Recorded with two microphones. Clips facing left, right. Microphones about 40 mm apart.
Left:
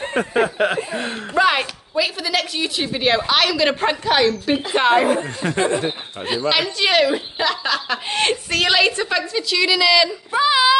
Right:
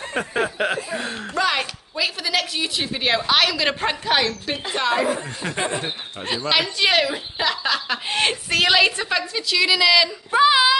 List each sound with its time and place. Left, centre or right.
0.1 s speech: centre
2.0 s speech: centre
4.7 s speech: left
5.2 s speech: centre